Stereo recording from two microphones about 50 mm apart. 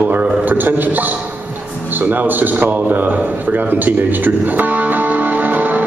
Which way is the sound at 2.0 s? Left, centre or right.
Right.